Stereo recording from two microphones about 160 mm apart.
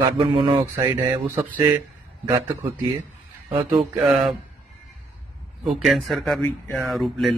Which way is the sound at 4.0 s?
Centre (ahead or behind).